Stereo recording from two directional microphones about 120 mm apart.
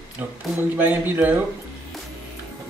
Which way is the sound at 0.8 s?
15° right (ahead or behind).